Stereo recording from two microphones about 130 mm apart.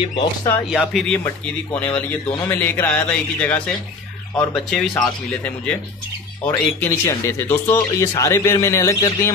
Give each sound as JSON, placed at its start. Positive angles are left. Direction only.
{"t": 0.0, "sound": "speech", "side_deg": 40}
{"t": 0.7, "sound": "speech", "side_deg": 0}
{"t": 2.0, "sound": "speech", "side_deg": 15}